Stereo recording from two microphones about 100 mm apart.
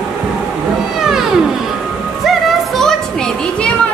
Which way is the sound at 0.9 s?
5° right (ahead or behind).